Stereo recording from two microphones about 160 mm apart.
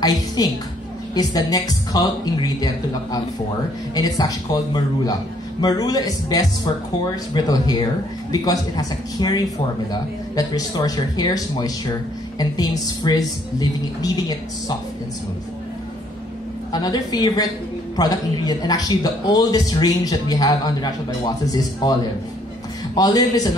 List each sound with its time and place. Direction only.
0.4 s speech: 25° left (ahead or behind)
5.6 s speech: 25° left (ahead or behind)
16.7 s speech: 25° left (ahead or behind)
22.9 s speech: 25° left (ahead or behind)